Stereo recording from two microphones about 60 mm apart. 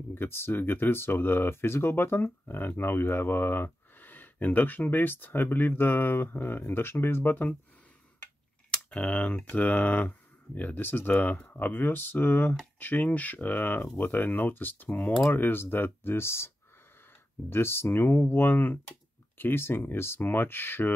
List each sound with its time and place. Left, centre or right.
0.1 s speech: left
8.6 s speech: centre; by 20.9 s left